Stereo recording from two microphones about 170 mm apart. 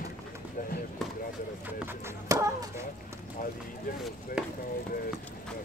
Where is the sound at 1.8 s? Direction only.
20° right (ahead or behind).